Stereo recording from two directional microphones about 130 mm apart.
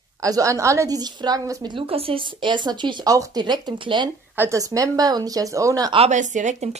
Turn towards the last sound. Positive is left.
turn(degrees=-60)  # may be behind; listen again after turning